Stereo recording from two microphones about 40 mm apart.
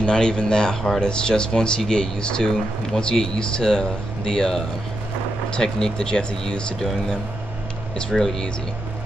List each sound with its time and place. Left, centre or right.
0.0 s speech: centre